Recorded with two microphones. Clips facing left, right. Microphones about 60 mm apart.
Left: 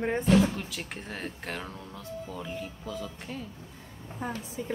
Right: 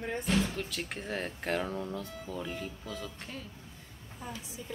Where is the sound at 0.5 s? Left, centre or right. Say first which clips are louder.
Even; centre.